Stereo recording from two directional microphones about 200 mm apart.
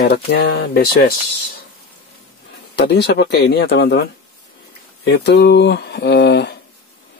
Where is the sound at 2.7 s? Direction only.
55° left (ahead or behind).